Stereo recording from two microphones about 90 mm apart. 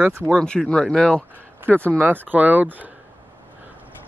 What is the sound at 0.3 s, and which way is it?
Speech, 5° left (ahead or behind).